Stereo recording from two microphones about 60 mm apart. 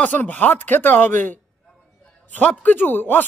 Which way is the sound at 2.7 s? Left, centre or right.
Left.